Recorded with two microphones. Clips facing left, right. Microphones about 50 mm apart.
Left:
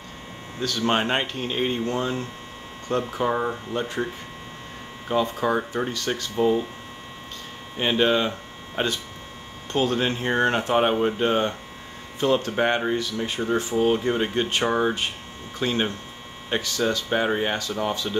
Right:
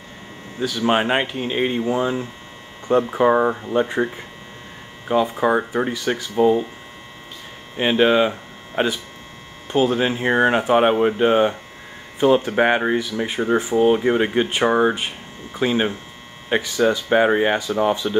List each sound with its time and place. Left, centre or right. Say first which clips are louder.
0.6 s speech: right 4 dB; centre
2.9 s speech: right 8 dB; right
7.7 s speech: right 5 dB; centre